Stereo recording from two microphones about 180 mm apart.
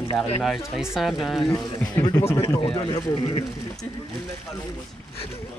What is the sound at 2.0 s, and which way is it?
A man's voice, 15° left (ahead or behind).